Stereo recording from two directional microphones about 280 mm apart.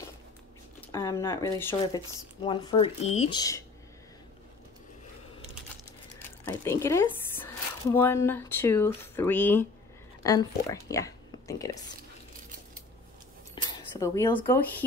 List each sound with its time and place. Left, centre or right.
0.7 s speech: centre
6.1 s speech: centre
13.7 s speech: centre